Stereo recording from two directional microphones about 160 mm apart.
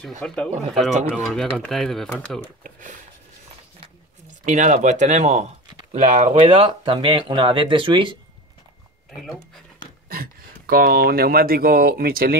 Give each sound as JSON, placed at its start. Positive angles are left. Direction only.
{"t": 0.2, "sound": "speech", "side_deg": 5}
{"t": 2.6, "sound": "speech", "side_deg": -50}
{"t": 4.5, "sound": "speech", "side_deg": -50}
{"t": 10.0, "sound": "speech", "side_deg": -65}